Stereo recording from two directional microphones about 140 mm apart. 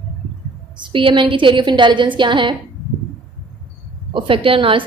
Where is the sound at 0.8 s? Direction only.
35° right (ahead or behind).